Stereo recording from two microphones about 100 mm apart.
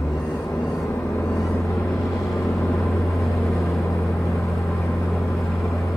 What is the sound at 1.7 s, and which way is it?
Vehicle, 30° left (ahead or behind).